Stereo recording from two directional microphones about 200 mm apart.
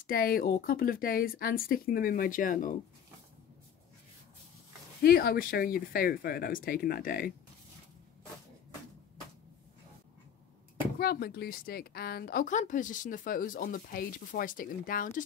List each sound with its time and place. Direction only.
0.0 s speech: 45° left (ahead or behind)
5.0 s speech: 50° left (ahead or behind)
11.0 s speech: 50° left (ahead or behind)